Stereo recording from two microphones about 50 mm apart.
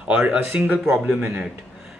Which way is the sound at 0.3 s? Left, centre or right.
Right.